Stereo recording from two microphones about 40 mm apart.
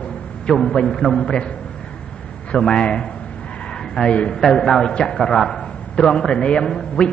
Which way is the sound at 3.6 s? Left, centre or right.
Left.